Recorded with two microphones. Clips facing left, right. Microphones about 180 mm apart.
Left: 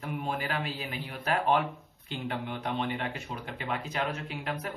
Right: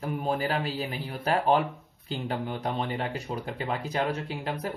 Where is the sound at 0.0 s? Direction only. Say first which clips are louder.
Right 5 dB; 35° right (ahead or behind).